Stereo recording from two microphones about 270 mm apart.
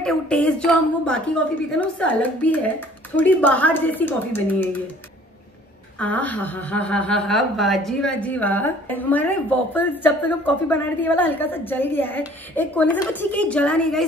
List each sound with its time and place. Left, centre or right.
0.0 s a woman's voice: centre
5.9 s speech: centre